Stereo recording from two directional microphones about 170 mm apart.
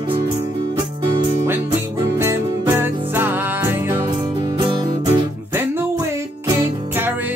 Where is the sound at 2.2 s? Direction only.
15° right (ahead or behind).